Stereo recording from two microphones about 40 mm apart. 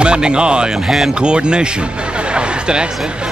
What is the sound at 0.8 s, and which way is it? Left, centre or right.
Speech, centre.